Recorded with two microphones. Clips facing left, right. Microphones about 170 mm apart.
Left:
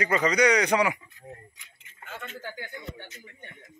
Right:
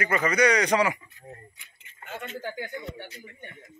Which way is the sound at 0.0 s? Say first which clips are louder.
Even; 20° left (ahead or behind).